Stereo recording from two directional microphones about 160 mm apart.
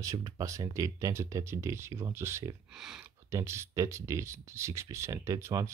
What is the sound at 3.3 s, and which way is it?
Speech, 15° right (ahead or behind).